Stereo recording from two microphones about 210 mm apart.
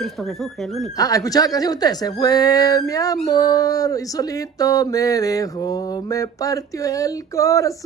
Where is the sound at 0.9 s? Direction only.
15° left (ahead or behind).